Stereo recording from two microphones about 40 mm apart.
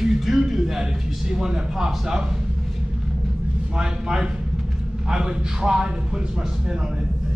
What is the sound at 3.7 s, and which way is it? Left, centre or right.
A man's voice, centre.